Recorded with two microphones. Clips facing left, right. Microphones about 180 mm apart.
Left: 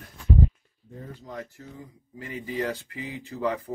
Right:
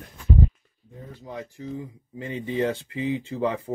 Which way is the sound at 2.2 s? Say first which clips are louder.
Right 5 dB; 30° right (ahead or behind).